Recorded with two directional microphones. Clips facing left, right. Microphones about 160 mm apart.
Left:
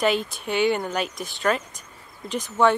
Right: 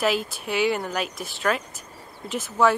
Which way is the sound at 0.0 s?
Centre (ahead or behind).